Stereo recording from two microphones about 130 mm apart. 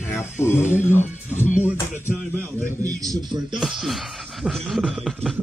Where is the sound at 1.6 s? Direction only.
15° right (ahead or behind).